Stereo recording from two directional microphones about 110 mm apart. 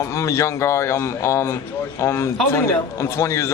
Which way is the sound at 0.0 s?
30° left (ahead or behind).